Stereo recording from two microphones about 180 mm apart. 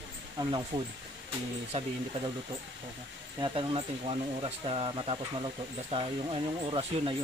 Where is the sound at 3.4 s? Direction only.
30° right (ahead or behind).